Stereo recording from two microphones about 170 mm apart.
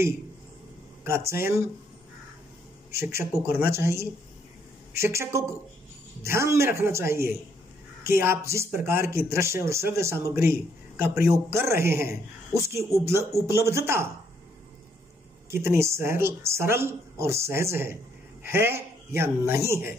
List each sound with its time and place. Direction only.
1.0 s speech: 15° right (ahead or behind)
2.9 s speech: 15° right (ahead or behind)
15.5 s speech: 15° right (ahead or behind)